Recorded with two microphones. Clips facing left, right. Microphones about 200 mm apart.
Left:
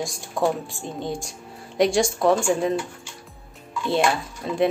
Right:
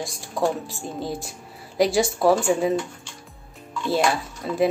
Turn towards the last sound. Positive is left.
turn(degrees=0)  # may be behind; listen again after turning